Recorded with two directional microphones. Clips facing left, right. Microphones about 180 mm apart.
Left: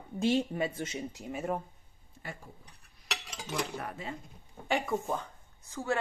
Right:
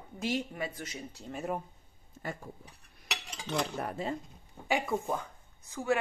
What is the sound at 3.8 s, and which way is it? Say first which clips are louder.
Speech: right 5 dB; 40° right (ahead or behind).